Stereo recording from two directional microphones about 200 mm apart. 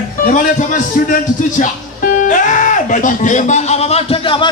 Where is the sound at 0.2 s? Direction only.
40° left (ahead or behind).